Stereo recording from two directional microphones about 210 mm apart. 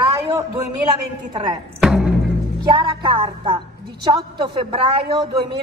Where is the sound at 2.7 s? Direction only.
25° right (ahead or behind).